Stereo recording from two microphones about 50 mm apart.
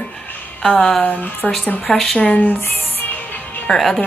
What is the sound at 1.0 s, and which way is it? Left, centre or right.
Speech, left.